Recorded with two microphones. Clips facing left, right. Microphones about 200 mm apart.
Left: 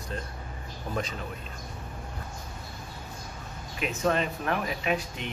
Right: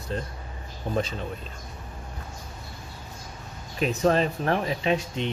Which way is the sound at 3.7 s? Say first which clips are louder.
Right 5 dB; 35° right (ahead or behind).